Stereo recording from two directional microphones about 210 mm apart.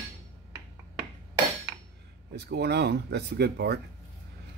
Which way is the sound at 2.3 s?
50° right (ahead or behind).